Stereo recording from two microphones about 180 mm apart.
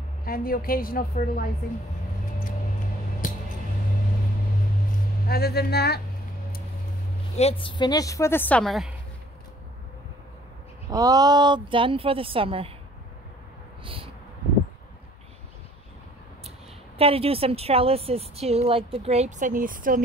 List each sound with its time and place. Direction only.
0.2 s a woman's voice: 55° left (ahead or behind)
5.2 s speech: 60° left (ahead or behind)
7.3 s a woman's voice: 30° left (ahead or behind); by 8.9 s centre (ahead or behind)
10.9 s a woman's voice: 20° right (ahead or behind)
13.8 s a sound: 30° right (ahead or behind)
17.0 s a woman's voice: 30° right (ahead or behind); by 20.0 s 50° right (ahead or behind)